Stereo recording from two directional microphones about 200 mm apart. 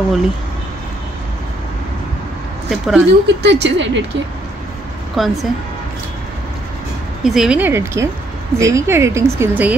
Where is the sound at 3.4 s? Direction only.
60° right (ahead or behind).